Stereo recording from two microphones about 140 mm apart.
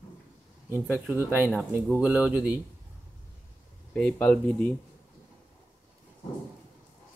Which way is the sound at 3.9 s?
10° left (ahead or behind).